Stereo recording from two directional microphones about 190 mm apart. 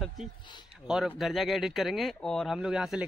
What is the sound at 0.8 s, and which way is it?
Speech, 5° right (ahead or behind).